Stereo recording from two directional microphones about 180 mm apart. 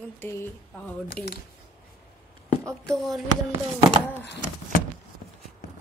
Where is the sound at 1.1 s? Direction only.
60° left (ahead or behind).